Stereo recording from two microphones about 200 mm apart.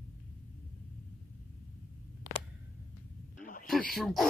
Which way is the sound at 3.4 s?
40° left (ahead or behind).